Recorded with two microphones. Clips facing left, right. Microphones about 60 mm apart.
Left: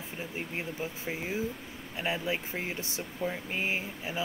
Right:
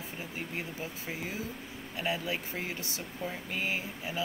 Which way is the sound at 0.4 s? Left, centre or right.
Left.